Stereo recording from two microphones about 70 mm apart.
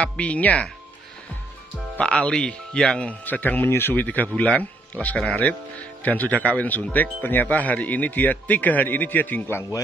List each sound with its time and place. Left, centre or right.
0.0 s speech: centre
2.0 s speech: centre